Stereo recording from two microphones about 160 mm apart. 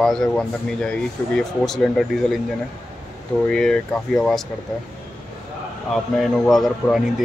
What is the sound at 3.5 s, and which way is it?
Speech, 5° left (ahead or behind).